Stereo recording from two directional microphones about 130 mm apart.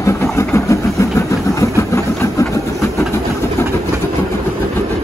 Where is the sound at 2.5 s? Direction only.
25° left (ahead or behind).